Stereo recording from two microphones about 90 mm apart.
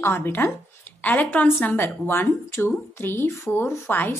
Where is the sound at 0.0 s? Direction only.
25° left (ahead or behind).